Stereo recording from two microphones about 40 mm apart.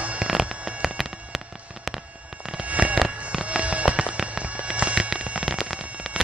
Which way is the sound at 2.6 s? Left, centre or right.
Right.